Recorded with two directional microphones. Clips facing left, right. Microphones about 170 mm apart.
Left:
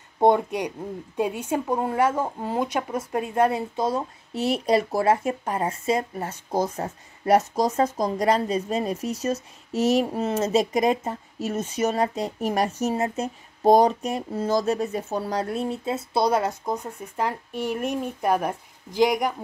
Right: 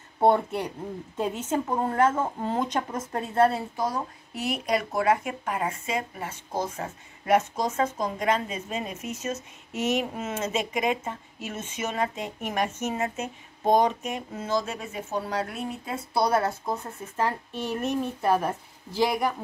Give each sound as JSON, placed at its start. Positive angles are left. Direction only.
{"t": 0.2, "sound": "speech", "side_deg": 15}